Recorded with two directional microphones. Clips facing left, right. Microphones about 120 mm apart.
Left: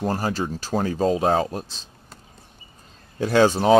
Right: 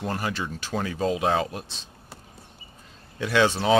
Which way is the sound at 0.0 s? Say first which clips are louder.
Left 5 dB; 35° left (ahead or behind).